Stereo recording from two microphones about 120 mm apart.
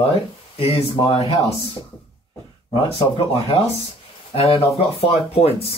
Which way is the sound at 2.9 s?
50° left (ahead or behind).